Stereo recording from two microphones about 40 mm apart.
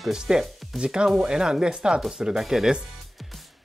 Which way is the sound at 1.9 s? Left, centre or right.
Centre.